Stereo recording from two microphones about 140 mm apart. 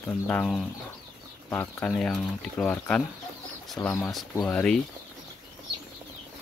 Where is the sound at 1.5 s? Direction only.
10° left (ahead or behind).